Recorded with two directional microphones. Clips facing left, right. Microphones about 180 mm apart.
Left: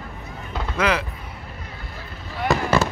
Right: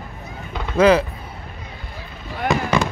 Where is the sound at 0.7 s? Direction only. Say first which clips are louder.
Right 9 dB; 30° right (ahead or behind).